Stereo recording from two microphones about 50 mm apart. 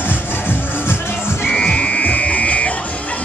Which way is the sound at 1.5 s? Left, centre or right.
Left.